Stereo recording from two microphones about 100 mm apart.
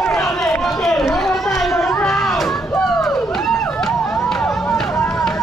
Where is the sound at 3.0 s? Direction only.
Centre (ahead or behind).